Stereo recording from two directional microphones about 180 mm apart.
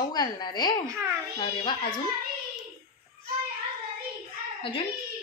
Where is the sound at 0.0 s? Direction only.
20° left (ahead or behind).